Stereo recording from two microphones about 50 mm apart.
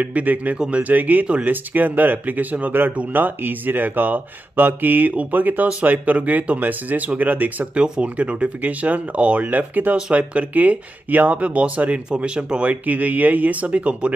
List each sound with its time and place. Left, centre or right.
0.0 s speech: right
7.7 s speech: right
12.1 s speech: centre
12.8 s speech: right